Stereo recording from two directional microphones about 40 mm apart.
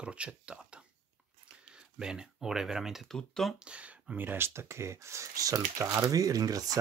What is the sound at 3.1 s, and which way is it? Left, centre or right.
Speech, centre.